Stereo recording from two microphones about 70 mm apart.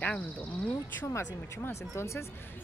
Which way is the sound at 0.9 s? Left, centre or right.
Left.